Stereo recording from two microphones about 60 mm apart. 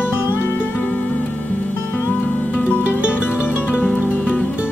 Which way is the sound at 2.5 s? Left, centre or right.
Left.